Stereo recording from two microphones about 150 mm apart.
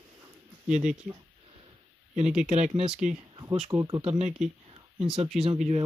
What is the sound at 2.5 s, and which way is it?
Speech, 45° right (ahead or behind).